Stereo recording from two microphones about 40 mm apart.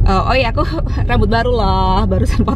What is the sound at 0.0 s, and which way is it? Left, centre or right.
Speech, centre.